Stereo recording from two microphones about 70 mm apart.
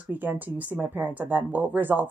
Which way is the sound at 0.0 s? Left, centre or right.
Right.